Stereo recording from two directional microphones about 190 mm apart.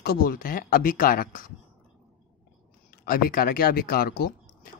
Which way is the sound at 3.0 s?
50° left (ahead or behind).